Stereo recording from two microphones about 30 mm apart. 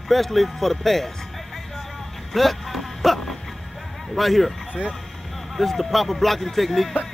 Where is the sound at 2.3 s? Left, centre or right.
Centre.